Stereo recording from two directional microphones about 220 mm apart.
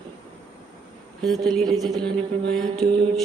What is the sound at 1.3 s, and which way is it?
Speech, centre (ahead or behind).